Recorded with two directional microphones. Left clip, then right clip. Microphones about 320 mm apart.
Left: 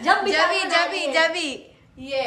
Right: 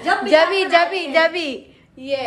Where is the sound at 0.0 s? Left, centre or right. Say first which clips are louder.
Even; centre.